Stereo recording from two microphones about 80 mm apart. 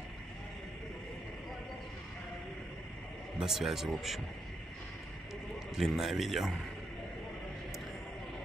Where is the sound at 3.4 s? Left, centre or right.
Centre.